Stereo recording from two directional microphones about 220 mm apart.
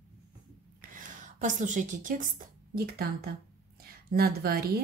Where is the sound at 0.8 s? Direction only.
35° right (ahead or behind).